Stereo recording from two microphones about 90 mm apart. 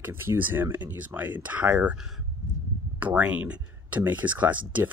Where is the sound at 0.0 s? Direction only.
25° right (ahead or behind).